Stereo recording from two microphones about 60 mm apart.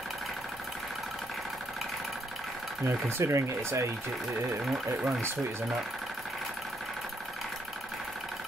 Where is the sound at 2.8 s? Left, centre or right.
Right.